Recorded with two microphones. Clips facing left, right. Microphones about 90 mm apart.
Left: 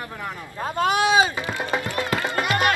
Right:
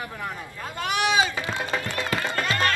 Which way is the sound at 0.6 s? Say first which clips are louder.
Left 6 dB; 35° left (ahead or behind).